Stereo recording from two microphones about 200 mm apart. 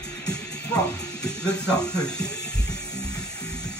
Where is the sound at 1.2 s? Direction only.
5° left (ahead or behind).